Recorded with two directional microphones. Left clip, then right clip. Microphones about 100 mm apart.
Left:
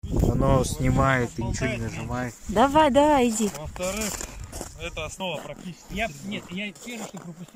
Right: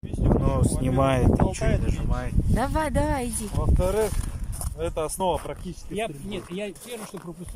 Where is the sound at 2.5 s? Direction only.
15° left (ahead or behind).